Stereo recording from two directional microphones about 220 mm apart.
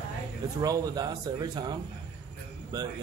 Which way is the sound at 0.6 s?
15° right (ahead or behind).